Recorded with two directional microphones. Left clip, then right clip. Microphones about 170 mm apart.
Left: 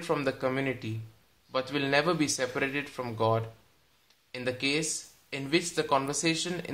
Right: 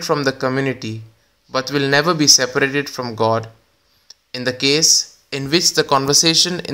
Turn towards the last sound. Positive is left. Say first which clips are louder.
# right 15 dB
turn(degrees=-45)  # may be behind; listen again after turning